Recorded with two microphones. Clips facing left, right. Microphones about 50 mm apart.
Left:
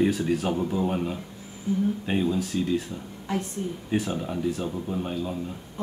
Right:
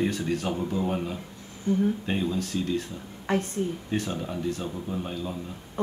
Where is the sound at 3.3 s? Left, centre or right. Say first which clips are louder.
Right 3 dB; right.